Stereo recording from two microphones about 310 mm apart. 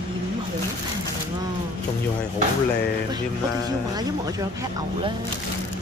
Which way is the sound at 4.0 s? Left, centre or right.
Centre.